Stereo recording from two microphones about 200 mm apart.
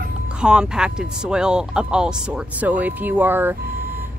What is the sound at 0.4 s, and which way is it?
A woman's voice, 5° right (ahead or behind).